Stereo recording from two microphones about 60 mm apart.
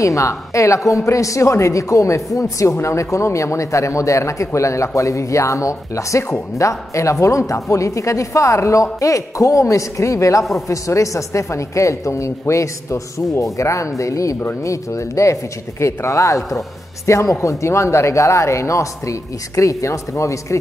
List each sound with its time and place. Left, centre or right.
0.0 s speech: left